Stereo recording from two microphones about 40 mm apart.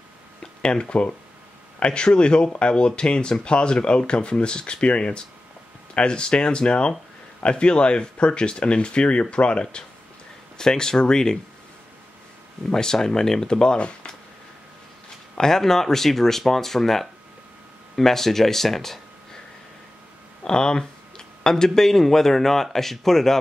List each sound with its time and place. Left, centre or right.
0.4 s speech: left
12.7 s speech: centre
15.3 s speech: centre
20.4 s speech: centre